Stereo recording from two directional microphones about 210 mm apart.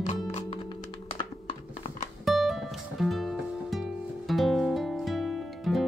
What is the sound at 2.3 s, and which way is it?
Music, centre (ahead or behind).